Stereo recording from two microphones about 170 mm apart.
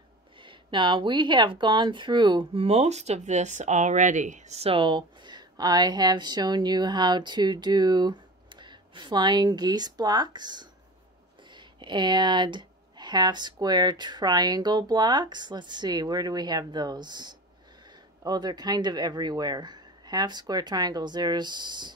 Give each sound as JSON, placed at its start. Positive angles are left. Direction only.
{"t": 0.4, "sound": "speech", "side_deg": -30}